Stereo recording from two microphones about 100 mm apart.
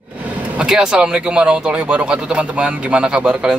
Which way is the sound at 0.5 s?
5° right (ahead or behind).